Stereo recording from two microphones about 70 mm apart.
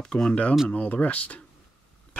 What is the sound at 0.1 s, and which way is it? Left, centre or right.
Speech, centre.